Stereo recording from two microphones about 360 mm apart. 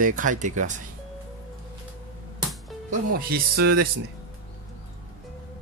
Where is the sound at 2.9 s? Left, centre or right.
Right.